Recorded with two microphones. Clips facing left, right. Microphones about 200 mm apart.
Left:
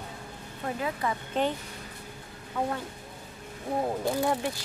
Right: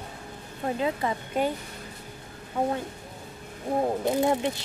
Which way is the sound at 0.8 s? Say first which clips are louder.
Right 3 dB; 25° right (ahead or behind).